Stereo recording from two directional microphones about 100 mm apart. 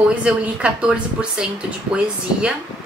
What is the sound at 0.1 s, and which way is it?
Speech, 10° right (ahead or behind).